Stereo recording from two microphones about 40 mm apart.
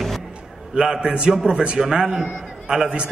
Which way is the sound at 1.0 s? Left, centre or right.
Right.